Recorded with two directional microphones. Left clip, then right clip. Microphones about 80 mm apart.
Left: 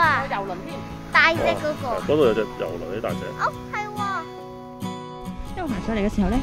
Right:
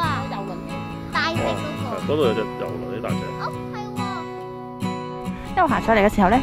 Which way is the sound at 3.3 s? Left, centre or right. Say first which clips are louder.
Left 3 dB; left.